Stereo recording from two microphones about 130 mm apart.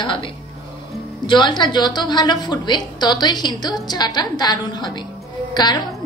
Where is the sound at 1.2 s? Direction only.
35° left (ahead or behind).